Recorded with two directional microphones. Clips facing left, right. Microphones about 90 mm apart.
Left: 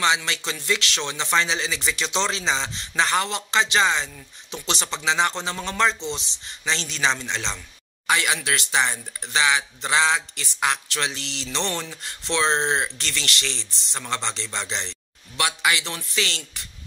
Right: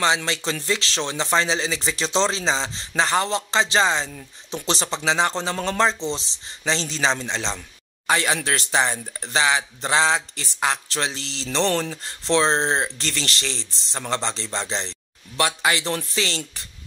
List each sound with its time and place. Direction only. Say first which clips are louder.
0.0 s a man's voice: right 1 dB; 35° right (ahead or behind)
16.2 s speech: right 2 dB; 35° right (ahead or behind)